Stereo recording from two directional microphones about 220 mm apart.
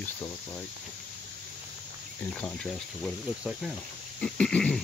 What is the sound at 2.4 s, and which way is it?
Cricket, centre (ahead or behind).